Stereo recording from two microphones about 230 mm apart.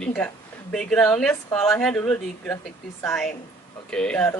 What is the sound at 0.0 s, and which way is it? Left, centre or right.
A woman's voice, centre.